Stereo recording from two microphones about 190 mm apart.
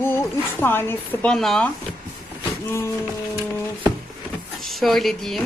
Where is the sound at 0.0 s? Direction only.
10° left (ahead or behind).